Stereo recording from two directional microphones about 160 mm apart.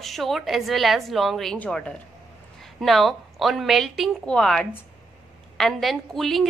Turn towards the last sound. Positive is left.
turn(degrees=0)  # may be behind; listen again after turning